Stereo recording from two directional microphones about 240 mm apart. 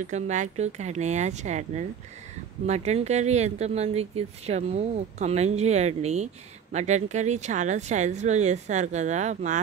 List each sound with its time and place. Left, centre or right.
0.0 s speech: right